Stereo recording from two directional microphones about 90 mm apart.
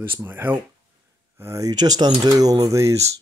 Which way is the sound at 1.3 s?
35° right (ahead or behind).